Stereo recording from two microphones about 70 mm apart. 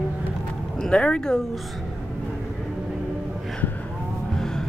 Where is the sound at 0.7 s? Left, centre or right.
Centre.